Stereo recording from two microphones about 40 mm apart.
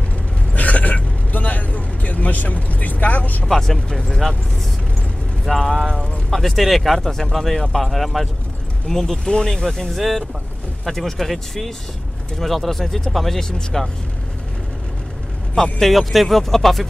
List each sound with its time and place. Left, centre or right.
0.5 s vehicle: left
3.4 s speech: centre
5.4 s speech: centre
7.1 s speech: centre
8.8 s speech: centre
13.4 s speech: centre
15.5 s speech: centre